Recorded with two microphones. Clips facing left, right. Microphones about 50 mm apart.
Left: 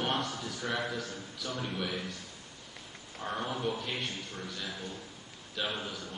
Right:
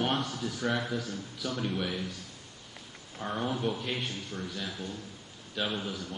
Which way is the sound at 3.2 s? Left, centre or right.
Centre.